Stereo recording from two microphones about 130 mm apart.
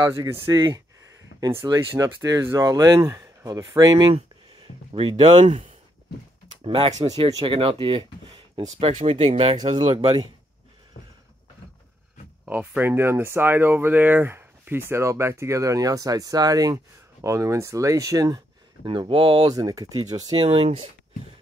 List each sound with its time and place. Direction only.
0.0 s speech: 30° right (ahead or behind)
4.9 s speech: 45° right (ahead or behind)
5.4 s speech: 60° right (ahead or behind)
6.6 s speech: 45° right (ahead or behind)
9.2 s speech: 55° right (ahead or behind)
9.8 s speech: 35° right (ahead or behind)
12.4 s speech: 15° right (ahead or behind); by 18.4 s 30° right (ahead or behind)
18.9 s speech: 40° right (ahead or behind)
19.5 s speech: 30° right (ahead or behind)
20.4 s speech: 45° right (ahead or behind)